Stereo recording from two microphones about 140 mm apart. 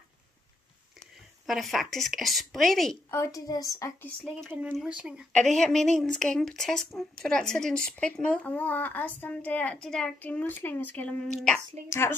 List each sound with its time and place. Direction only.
0.9 s a woman's voice: centre (ahead or behind)
3.1 s a woman's voice: 20° left (ahead or behind)
4.5 s speech: 15° right (ahead or behind); by 12.2 s 15° left (ahead or behind)